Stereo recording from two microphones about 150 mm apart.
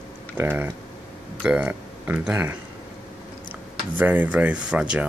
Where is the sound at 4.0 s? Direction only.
10° right (ahead or behind).